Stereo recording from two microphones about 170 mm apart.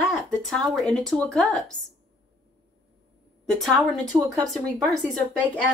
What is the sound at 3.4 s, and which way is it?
Speech, centre (ahead or behind).